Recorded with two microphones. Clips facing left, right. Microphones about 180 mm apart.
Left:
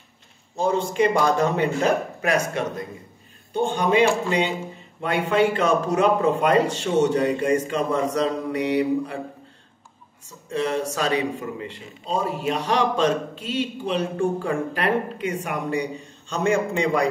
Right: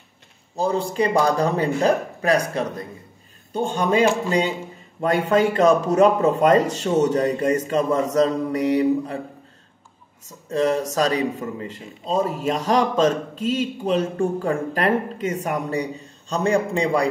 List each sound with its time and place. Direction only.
0.6 s a man's voice: 35° right (ahead or behind)
3.5 s a man's voice: 40° right (ahead or behind)
10.5 s a man's voice: 40° right (ahead or behind)